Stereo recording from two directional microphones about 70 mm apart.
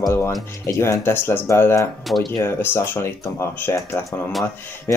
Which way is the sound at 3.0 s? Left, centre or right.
Left.